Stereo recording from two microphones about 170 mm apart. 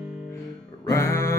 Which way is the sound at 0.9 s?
15° left (ahead or behind).